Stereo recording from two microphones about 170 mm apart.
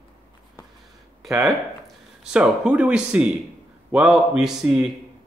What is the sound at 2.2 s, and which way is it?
A man's voice, 5° right (ahead or behind).